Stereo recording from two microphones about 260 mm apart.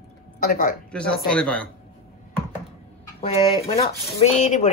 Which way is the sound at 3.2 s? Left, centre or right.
Left.